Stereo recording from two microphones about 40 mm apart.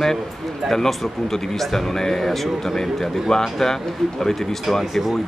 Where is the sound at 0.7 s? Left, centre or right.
Centre.